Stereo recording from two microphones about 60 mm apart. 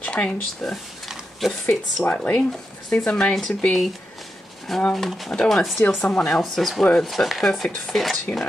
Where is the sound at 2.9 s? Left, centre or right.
Centre.